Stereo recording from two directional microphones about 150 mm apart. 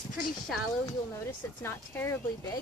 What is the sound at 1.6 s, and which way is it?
Speech, 15° left (ahead or behind).